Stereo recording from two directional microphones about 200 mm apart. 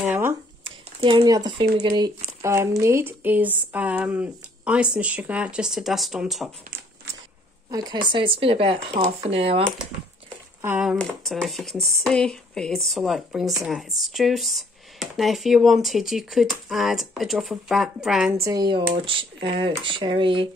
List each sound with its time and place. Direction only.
0.0 s a sound: 10° right (ahead or behind)
0.7 s speech: 25° right (ahead or behind); by 6.5 s centre (ahead or behind)
7.7 s speech: 20° right (ahead or behind)
10.6 s speech: 5° right (ahead or behind)
18.4 s speech: 20° right (ahead or behind)